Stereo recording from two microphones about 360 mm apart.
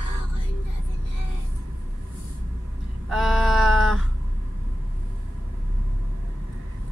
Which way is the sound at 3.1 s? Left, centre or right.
Centre.